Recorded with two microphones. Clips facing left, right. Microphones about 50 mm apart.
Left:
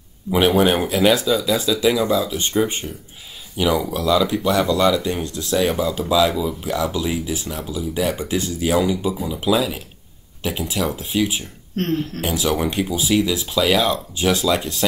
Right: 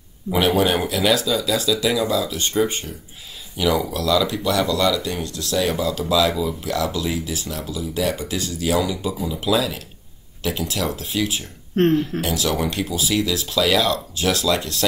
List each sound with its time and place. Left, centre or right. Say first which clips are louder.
0.3 s speech: left 2 dB; centre
0.6 s speech: left 3 dB; left
11.7 s speech: right 5 dB; right
12.2 s speech: left 1 dB; centre